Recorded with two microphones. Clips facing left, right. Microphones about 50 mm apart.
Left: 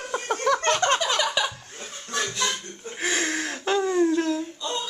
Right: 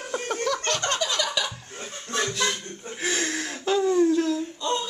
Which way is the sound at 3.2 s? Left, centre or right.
Centre.